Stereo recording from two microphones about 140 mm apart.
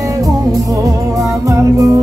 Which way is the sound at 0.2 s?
25° right (ahead or behind).